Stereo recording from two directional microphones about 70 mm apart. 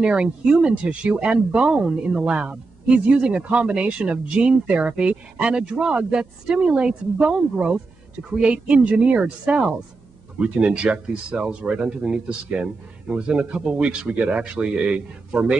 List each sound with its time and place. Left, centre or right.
0.0 s speech: centre